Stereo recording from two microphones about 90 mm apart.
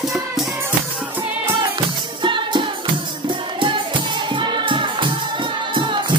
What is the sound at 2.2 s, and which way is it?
Music, 65° right (ahead or behind).